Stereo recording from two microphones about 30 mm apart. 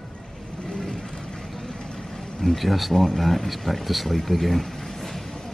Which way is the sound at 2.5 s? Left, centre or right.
Centre.